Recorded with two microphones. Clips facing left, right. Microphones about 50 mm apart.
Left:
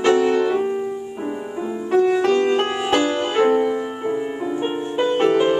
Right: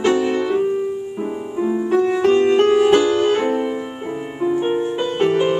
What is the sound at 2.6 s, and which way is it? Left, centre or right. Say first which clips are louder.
Music: right 6 dB; centre.